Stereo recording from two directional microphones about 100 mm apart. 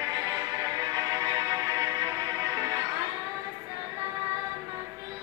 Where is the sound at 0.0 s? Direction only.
35° right (ahead or behind).